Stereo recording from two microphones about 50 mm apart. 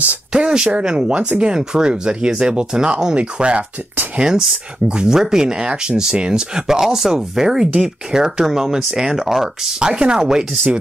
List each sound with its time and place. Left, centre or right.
0.3 s speech: centre
4.2 s speech: centre